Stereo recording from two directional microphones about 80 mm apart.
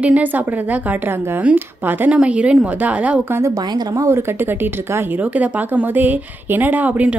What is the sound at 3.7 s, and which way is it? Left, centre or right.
Speech, right.